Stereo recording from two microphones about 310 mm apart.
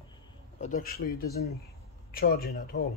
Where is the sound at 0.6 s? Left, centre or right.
Left.